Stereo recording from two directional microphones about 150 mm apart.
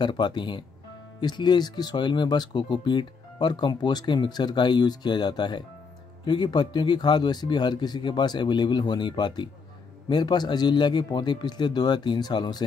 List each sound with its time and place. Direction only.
0.0 s speech: 30° left (ahead or behind)